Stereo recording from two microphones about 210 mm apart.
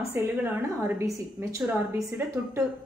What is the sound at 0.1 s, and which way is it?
A woman's voice, 10° right (ahead or behind).